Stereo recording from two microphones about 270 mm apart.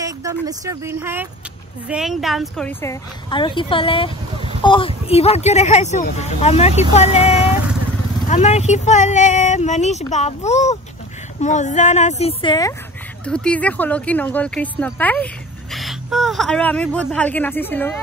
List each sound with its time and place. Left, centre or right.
0.0 s a woman's voice: centre
13.2 s speech: centre